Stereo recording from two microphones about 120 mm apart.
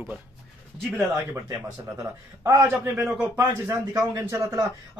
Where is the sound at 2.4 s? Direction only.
25° right (ahead or behind).